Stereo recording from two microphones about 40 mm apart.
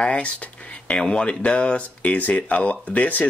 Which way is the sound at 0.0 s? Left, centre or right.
Left.